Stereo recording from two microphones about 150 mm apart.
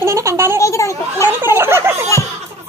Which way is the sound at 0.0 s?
20° right (ahead or behind).